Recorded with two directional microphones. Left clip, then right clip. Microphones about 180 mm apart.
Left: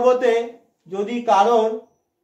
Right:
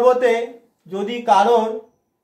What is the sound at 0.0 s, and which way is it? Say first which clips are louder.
Speech: right 2 dB; 15° left (ahead or behind).